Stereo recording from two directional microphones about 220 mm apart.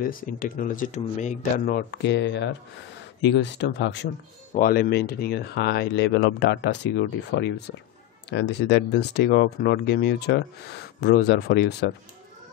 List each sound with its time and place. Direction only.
0.0 s speech: 40° left (ahead or behind)
4.6 s speech: 40° left (ahead or behind)